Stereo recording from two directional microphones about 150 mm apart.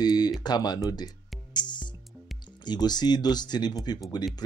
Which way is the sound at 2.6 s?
30° left (ahead or behind).